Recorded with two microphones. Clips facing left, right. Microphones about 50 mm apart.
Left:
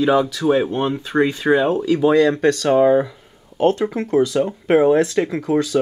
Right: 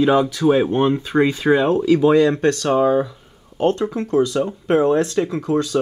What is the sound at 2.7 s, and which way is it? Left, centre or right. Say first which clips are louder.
Speech: left 4 dB; left.